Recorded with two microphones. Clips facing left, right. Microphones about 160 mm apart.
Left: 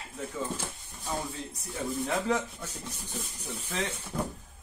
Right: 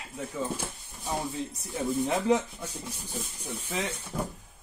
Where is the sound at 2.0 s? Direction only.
20° right (ahead or behind).